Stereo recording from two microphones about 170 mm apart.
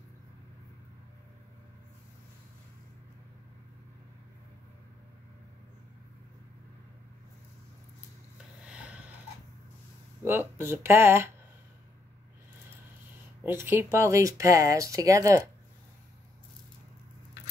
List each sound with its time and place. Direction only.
8.6 s a sound: 5° right (ahead or behind)
10.2 s speech: 15° right (ahead or behind)
13.5 s speech: 15° right (ahead or behind)